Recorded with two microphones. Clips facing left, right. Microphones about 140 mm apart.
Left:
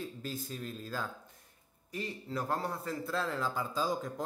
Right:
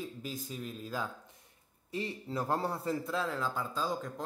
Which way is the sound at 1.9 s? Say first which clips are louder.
Right 2 dB; 25° right (ahead or behind).